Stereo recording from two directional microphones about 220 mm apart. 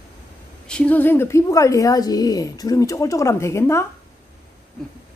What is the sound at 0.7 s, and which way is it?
A woman's voice, 5° left (ahead or behind).